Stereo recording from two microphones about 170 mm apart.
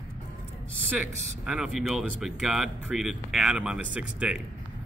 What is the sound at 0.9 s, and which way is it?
Speech, 5° right (ahead or behind).